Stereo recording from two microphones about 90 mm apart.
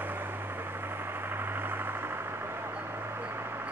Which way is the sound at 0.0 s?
20° right (ahead or behind).